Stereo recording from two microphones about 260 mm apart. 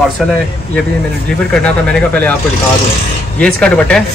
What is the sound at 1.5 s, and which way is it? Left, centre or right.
Speech, centre.